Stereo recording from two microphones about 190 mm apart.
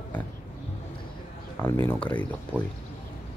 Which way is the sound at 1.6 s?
10° left (ahead or behind).